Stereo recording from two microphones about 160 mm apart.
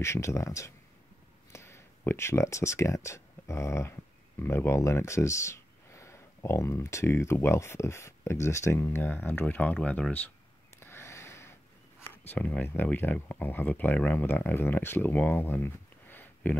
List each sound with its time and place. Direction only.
0.0 s speech: 15° left (ahead or behind)
10.8 s a sound: 15° left (ahead or behind)
12.0 s speech: 15° left (ahead or behind)